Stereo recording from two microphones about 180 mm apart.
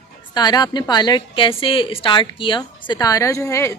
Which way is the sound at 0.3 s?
25° left (ahead or behind).